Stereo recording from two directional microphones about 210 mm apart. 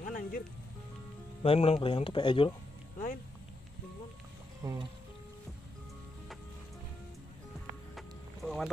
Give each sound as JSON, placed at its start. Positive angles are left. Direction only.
{"t": 0.0, "sound": "music", "side_deg": 40}
{"t": 1.4, "sound": "speech", "side_deg": 30}
{"t": 4.6, "sound": "speech", "side_deg": -15}
{"t": 8.4, "sound": "boat", "side_deg": 5}